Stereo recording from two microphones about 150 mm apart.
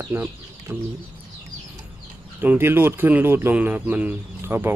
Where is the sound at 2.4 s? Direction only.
15° right (ahead or behind).